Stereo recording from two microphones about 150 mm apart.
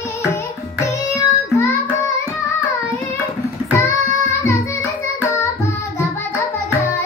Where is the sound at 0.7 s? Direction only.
20° left (ahead or behind).